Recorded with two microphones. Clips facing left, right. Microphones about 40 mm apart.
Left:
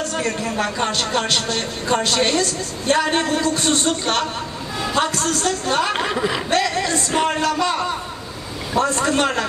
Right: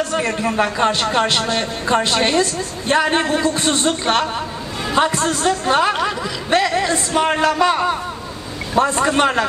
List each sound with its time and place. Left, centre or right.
0.1 s a woman's voice: right
5.9 s speech: centre
6.5 s a sound: centre
7.2 s a woman's voice: centre